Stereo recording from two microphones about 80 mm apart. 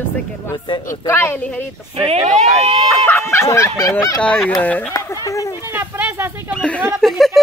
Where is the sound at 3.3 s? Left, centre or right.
Left.